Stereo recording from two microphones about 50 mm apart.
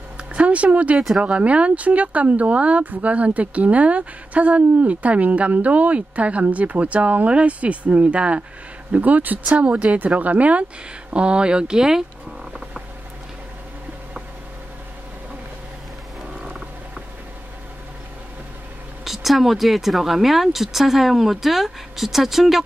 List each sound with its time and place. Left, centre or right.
0.2 s a sound: right
0.9 s speech: centre
1.2 s speech: right
9.5 s speech: right
19.0 s speech: centre